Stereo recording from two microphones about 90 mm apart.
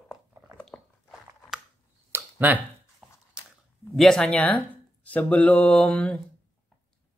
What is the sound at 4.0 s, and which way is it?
Speech, 5° left (ahead or behind).